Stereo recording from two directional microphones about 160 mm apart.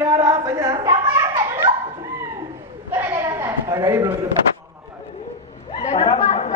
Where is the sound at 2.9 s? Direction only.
15° right (ahead or behind).